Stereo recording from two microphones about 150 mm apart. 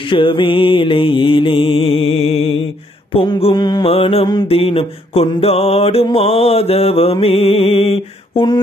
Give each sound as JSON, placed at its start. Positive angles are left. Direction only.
{"t": 0.1, "sound": "mantra", "side_deg": 35}
{"t": 3.9, "sound": "mantra", "side_deg": 40}